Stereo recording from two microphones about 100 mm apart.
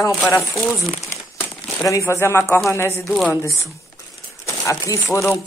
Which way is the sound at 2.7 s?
25° left (ahead or behind).